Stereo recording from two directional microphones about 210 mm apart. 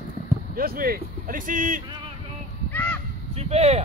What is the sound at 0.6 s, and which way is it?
Speech, 45° right (ahead or behind).